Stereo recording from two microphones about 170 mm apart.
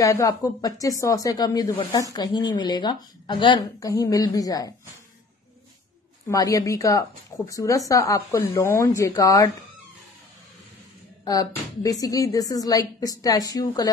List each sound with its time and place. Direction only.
0.0 s speech: 20° left (ahead or behind)
6.2 s speech: 20° left (ahead or behind)
11.2 s speech: 20° left (ahead or behind)